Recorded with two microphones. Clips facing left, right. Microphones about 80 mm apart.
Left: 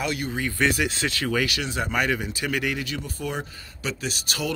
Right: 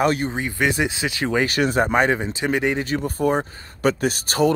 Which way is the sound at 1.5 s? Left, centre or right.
Right.